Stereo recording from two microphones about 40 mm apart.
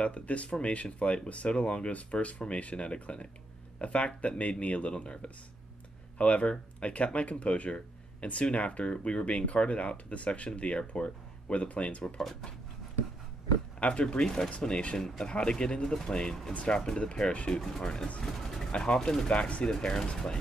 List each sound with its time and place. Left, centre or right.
0.0 s speech: left
12.2 s speech: centre
13.7 s speech: left
14.2 s speech: centre
17.3 s speech: left
18.2 s speech: centre
18.7 s speech: left
18.9 s speech: centre
19.2 s speech: left
19.7 s speech: centre